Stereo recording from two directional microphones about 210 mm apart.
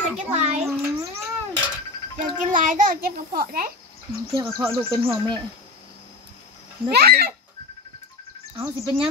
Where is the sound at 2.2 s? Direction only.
40° right (ahead or behind).